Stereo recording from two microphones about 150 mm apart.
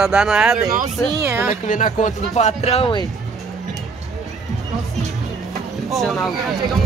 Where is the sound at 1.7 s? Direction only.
60° left (ahead or behind); by 3.0 s 40° left (ahead or behind).